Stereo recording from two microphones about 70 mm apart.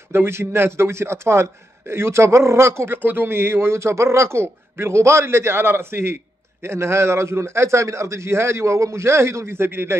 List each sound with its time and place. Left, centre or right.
0.1 s a man's voice: right